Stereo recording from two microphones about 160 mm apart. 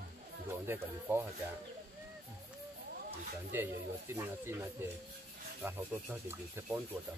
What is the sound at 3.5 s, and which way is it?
Speech, 15° right (ahead or behind).